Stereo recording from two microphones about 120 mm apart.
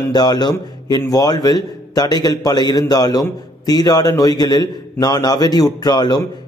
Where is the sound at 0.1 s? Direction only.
35° left (ahead or behind).